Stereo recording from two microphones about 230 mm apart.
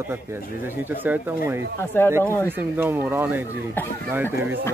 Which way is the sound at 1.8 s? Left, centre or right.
Centre.